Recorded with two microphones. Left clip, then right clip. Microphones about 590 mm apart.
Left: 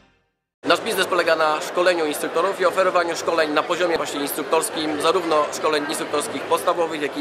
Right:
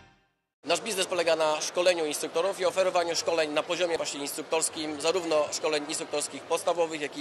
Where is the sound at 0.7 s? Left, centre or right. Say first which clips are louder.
Left 9 dB; right.